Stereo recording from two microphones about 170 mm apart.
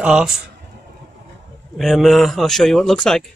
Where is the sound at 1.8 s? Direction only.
Centre (ahead or behind).